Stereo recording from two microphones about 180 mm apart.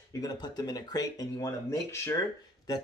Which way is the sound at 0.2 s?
20° left (ahead or behind).